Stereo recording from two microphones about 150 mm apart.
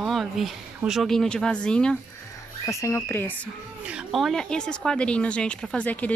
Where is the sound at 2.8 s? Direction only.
15° left (ahead or behind).